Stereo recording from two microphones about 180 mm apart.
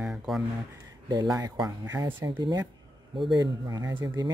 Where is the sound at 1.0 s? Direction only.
20° right (ahead or behind).